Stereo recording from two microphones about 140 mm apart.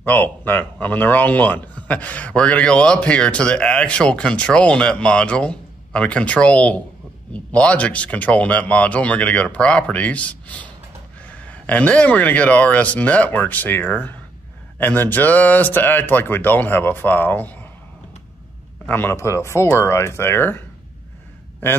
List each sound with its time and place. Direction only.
0.0 s speech: 15° left (ahead or behind)
18.9 s speech: 15° left (ahead or behind)